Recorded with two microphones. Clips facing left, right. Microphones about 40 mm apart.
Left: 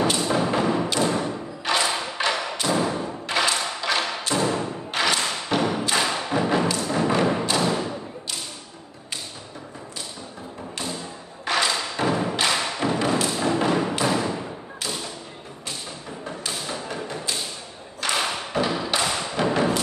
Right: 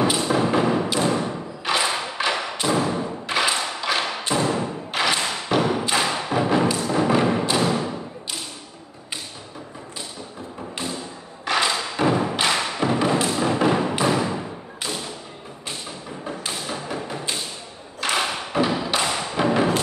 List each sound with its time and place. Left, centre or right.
0.0 s thump: centre
11.5 s thump: centre
16.3 s thump: centre